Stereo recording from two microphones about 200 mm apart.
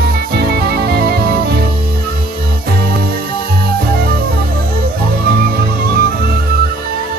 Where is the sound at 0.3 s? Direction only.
50° right (ahead or behind).